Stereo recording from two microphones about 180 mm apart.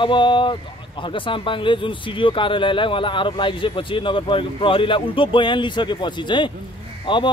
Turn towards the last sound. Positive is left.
turn(degrees=25)  # may be behind; listen again after turning